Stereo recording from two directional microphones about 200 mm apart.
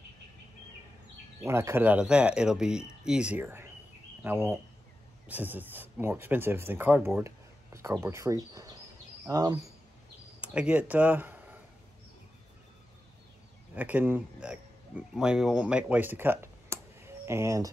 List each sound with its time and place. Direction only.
1.4 s speech: 15° right (ahead or behind)
10.4 s speech: 5° right (ahead or behind)
13.7 s speech: 10° right (ahead or behind)